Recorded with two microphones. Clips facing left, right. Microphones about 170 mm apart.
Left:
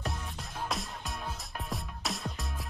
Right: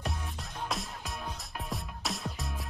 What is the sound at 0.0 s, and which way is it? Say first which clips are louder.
Music: even; centre (ahead or behind).